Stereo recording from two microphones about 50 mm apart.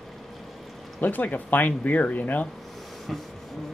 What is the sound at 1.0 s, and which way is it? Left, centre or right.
Speech, left.